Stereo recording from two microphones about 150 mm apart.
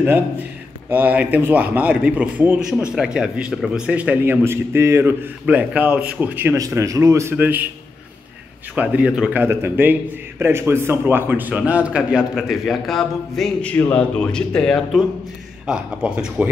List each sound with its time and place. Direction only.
0.0 s speech: 15° right (ahead or behind)
8.7 s a man's voice: 10° right (ahead or behind)